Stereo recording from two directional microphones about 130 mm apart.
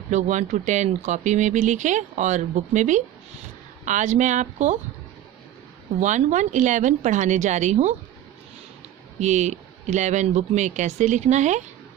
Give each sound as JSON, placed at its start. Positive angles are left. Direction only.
{"t": 0.1, "sound": "speech", "side_deg": -65}
{"t": 5.9, "sound": "speech", "side_deg": -65}
{"t": 9.2, "sound": "speech", "side_deg": -65}